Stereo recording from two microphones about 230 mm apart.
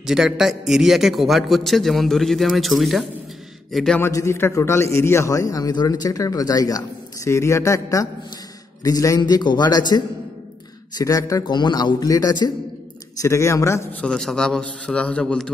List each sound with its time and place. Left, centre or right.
0.0 s a man's voice: centre